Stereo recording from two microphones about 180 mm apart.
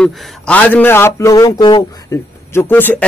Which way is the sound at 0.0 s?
5° left (ahead or behind).